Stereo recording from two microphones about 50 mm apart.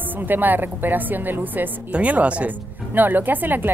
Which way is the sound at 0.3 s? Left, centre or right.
Right.